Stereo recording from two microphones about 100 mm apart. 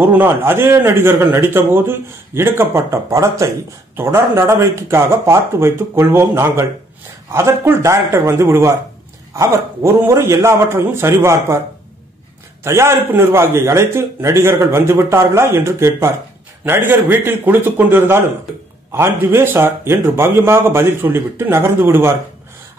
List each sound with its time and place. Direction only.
0.0 s a man's voice: 20° right (ahead or behind)
12.6 s a man's voice: 25° right (ahead or behind)